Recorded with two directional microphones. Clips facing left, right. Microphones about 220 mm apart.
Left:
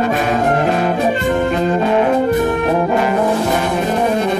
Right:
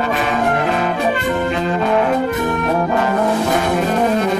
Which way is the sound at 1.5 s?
40° left (ahead or behind).